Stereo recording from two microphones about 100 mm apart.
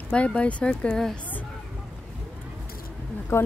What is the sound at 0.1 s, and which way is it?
Speech, 10° left (ahead or behind).